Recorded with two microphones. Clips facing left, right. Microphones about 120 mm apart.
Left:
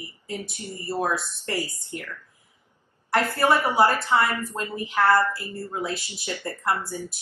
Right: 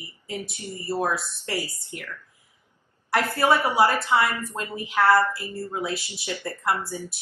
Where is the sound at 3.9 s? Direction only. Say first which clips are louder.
Even; 15° right (ahead or behind).